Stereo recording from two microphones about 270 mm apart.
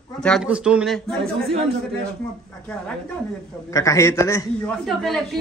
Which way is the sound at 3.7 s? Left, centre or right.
Centre.